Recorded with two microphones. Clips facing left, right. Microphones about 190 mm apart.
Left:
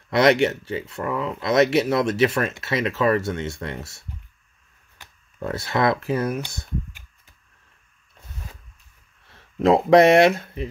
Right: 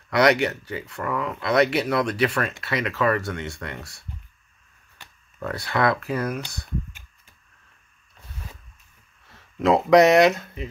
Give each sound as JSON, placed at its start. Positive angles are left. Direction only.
{"t": 0.1, "sound": "speech", "side_deg": 25}
{"t": 5.4, "sound": "speech", "side_deg": 25}
{"t": 9.7, "sound": "speech", "side_deg": 30}